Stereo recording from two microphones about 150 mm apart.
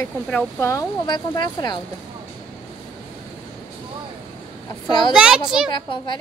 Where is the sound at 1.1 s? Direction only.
30° left (ahead or behind).